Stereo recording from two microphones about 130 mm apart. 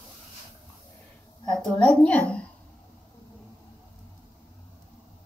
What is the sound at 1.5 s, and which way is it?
Speech, 10° left (ahead or behind).